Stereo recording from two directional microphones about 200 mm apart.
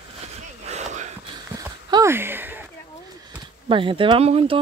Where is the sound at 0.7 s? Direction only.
35° right (ahead or behind).